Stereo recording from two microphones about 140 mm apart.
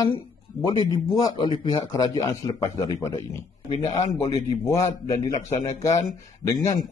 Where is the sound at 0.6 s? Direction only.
25° left (ahead or behind).